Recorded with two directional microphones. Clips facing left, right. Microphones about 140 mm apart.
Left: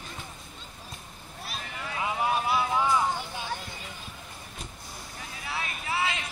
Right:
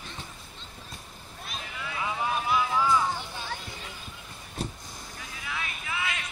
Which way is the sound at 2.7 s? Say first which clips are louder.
Even; 20° left (ahead or behind).